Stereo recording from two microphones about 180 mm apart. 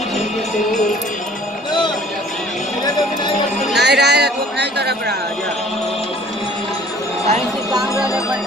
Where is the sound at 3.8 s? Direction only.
65° right (ahead or behind).